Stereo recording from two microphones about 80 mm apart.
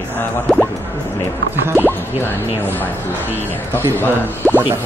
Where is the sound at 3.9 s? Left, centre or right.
Left.